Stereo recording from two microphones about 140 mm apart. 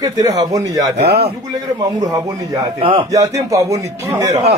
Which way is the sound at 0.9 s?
50° right (ahead or behind).